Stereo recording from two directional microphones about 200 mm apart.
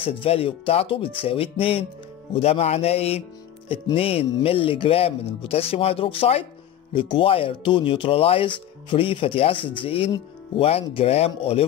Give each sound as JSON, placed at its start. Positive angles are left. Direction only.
{"t": 0.0, "sound": "speech", "side_deg": 30}